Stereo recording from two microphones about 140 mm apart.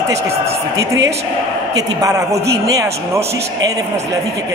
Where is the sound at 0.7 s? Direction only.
25° right (ahead or behind).